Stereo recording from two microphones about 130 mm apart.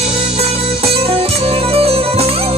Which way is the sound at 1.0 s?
50° right (ahead or behind).